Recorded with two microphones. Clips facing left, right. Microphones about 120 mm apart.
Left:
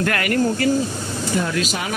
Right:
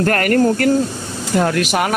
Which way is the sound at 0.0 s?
45° right (ahead or behind).